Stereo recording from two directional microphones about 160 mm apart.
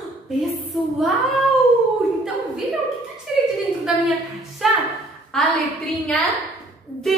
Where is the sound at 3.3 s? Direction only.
5° right (ahead or behind).